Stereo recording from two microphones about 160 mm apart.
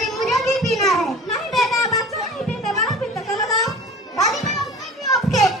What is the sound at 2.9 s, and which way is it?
Music, centre (ahead or behind).